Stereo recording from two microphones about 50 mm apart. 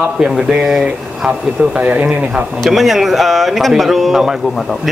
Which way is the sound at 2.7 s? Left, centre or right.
Centre.